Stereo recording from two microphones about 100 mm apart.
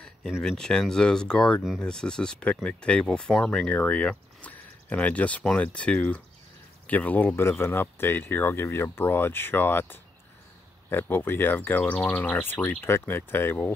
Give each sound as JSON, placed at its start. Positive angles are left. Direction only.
{"t": 0.4, "sound": "speech", "side_deg": 5}